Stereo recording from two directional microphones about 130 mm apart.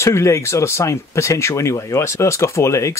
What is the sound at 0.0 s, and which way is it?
Speech, 20° left (ahead or behind).